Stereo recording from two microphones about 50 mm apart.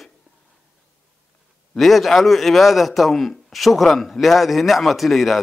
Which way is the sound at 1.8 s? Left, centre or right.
Centre.